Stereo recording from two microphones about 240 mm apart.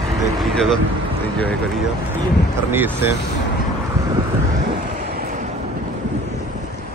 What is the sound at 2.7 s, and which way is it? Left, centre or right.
Speech, centre.